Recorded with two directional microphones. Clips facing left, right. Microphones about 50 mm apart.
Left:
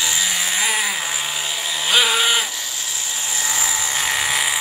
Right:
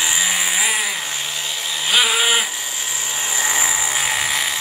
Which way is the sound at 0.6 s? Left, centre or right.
Centre.